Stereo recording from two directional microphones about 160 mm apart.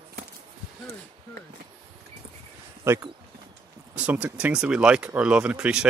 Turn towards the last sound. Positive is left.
turn(degrees=-5)  # may be behind; listen again after turning